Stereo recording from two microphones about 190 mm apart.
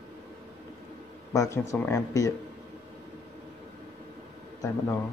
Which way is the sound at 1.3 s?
15° left (ahead or behind).